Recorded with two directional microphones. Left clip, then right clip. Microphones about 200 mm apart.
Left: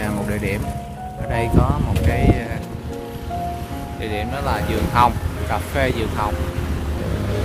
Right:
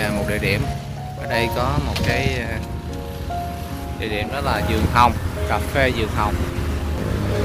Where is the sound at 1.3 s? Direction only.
5° left (ahead or behind).